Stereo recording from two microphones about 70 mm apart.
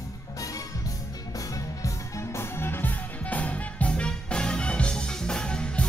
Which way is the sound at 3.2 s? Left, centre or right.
Left.